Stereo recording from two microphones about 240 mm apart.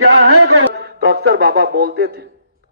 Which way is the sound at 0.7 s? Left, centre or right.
Right.